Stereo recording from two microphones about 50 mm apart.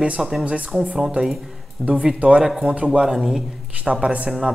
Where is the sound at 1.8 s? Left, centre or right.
Centre.